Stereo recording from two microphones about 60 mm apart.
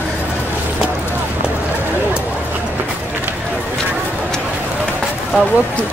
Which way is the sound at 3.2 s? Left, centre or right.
Right.